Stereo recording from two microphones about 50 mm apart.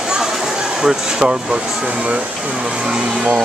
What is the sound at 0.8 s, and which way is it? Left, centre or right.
Speech, centre.